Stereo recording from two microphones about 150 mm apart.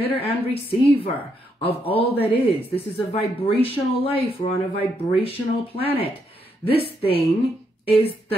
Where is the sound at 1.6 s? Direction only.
40° left (ahead or behind).